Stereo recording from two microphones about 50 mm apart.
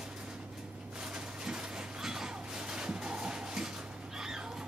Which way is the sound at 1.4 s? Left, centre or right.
Centre.